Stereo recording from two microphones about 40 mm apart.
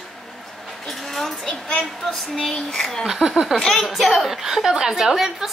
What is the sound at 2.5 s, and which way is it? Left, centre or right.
Child singing, centre.